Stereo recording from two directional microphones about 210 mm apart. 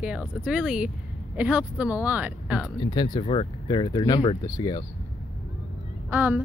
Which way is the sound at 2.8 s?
20° left (ahead or behind).